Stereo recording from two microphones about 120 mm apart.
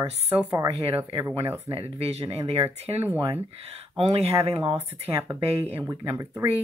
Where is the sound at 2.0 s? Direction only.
60° right (ahead or behind).